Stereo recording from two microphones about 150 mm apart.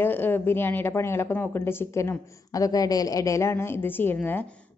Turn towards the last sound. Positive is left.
turn(degrees=10)  # may be behind; listen again after turning